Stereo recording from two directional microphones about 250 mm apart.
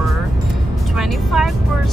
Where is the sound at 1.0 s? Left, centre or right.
Centre.